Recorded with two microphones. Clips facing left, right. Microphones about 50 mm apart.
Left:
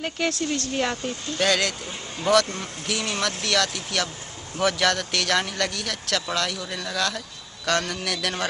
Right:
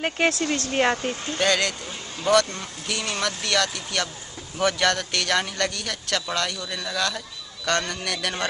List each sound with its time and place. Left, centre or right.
0.0 s speech: right
1.4 s speech: centre